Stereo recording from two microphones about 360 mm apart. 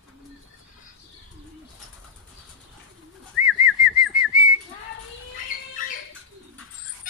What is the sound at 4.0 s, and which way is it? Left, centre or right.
Whistling, centre.